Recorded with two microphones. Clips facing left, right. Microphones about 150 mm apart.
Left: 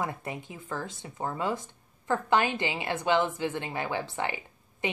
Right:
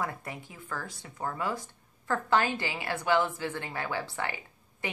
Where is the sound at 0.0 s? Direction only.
20° left (ahead or behind).